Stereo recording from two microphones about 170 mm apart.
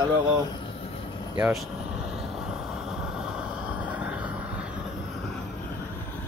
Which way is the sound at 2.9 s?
5° right (ahead or behind).